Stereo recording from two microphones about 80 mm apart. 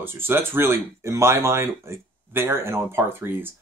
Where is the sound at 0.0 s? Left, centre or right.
Right.